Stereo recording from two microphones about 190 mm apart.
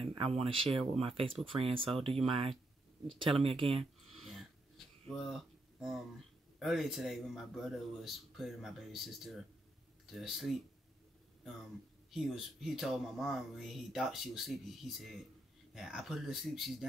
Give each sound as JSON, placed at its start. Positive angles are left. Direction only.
{"t": 0.0, "sound": "speech", "side_deg": -30}
{"t": 4.3, "sound": "a sound", "side_deg": 0}
{"t": 6.6, "sound": "speech", "side_deg": 0}
{"t": 12.1, "sound": "speech", "side_deg": 0}